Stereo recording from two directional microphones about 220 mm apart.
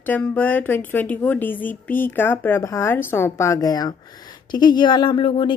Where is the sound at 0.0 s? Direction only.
10° left (ahead or behind).